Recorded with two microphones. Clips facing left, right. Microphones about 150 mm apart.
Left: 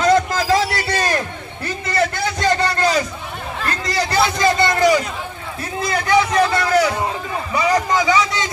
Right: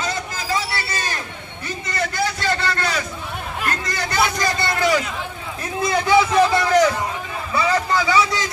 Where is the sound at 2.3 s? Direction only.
40° left (ahead or behind).